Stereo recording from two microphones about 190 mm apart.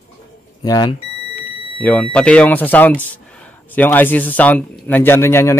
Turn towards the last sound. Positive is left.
turn(degrees=15)  # may be behind; listen again after turning